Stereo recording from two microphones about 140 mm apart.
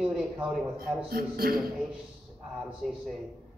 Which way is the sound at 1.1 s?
90° right.